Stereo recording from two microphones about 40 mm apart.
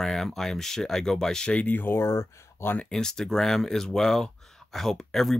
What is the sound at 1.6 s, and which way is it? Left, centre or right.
Speech, left.